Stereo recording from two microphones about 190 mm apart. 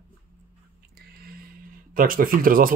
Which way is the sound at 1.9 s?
45° right (ahead or behind).